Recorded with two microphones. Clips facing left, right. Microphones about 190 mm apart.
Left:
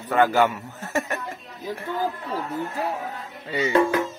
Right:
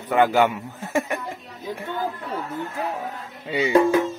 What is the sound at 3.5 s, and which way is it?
Speech, 10° right (ahead or behind).